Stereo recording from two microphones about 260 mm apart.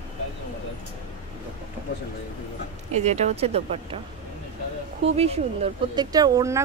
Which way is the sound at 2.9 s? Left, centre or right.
Right.